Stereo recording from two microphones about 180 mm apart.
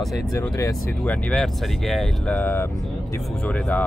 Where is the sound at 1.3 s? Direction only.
Centre (ahead or behind).